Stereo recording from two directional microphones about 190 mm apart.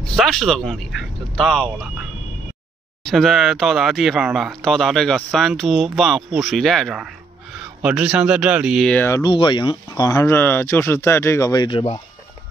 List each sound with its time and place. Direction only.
0.1 s speech: centre (ahead or behind)
3.0 s speech: centre (ahead or behind)
9.2 s speech: 25° left (ahead or behind)